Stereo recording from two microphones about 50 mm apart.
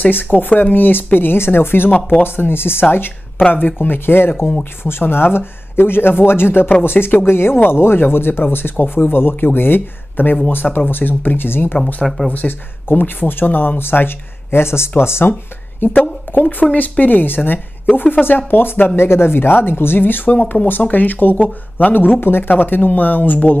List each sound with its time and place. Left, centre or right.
0.0 s speech: left
3.4 s speech: left
3.8 s speech: left
15.8 s speech: left